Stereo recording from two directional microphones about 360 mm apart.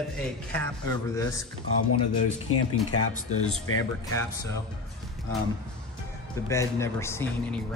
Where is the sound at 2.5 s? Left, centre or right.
Left.